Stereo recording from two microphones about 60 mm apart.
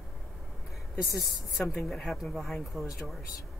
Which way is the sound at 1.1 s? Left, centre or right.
Centre.